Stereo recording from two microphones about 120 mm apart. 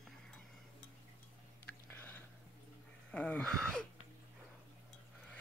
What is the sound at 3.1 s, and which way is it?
Speech, 10° left (ahead or behind).